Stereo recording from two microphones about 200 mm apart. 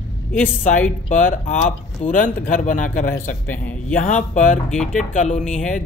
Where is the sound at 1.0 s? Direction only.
40° left (ahead or behind).